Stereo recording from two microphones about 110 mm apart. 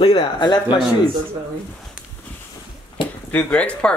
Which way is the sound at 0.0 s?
45° left (ahead or behind).